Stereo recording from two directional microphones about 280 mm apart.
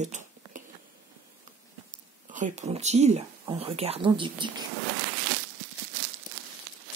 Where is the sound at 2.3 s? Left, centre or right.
Right.